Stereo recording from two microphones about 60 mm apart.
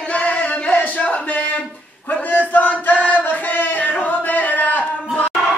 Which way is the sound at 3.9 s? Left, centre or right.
Left.